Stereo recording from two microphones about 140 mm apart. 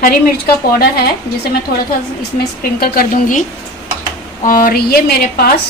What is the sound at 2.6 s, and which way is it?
Speech, 90° left.